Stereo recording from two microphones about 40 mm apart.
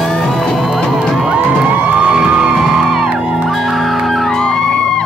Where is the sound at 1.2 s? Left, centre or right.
Right.